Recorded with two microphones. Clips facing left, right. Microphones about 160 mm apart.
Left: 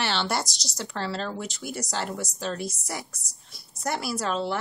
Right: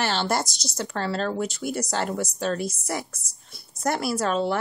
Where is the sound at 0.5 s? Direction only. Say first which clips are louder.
Right 6 dB; centre (ahead or behind).